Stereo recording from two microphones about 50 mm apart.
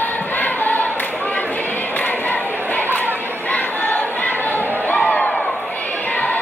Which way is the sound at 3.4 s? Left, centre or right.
Left.